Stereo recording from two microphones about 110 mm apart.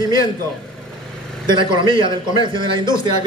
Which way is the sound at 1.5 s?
45° right (ahead or behind).